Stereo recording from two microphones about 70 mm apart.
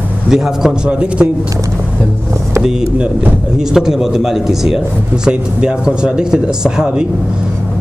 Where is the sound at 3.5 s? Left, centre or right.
Centre.